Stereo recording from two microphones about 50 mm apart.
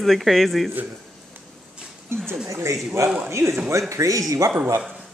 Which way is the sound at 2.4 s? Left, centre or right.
Right.